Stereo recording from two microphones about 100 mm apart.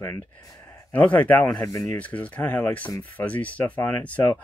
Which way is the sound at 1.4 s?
40° left (ahead or behind).